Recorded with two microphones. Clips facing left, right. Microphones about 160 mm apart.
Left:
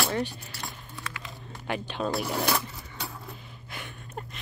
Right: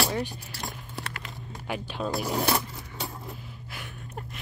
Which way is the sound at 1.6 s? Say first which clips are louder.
Left 1 dB; 5° right (ahead or behind).